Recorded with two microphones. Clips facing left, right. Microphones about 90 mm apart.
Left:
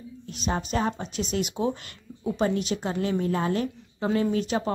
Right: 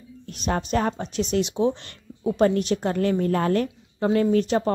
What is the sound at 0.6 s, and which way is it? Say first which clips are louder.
Speech: right 4 dB; 45° right (ahead or behind).